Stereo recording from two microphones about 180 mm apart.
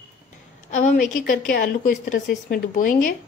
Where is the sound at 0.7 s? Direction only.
40° left (ahead or behind).